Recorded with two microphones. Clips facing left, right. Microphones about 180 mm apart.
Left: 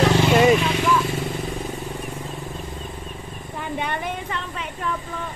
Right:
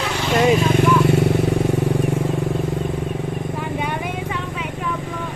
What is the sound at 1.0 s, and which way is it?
Vehicle, 65° right (ahead or behind).